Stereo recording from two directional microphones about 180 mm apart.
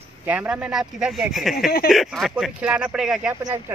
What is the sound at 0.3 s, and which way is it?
Speech, 5° right (ahead or behind).